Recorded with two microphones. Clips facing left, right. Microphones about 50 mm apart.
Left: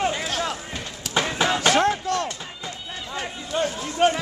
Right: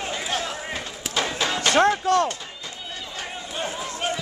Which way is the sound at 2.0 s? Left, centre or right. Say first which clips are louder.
Right 5 dB; right.